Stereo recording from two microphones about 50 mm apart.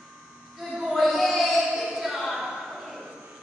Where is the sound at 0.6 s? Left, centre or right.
Centre.